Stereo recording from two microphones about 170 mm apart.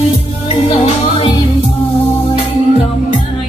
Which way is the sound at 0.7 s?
35° left (ahead or behind).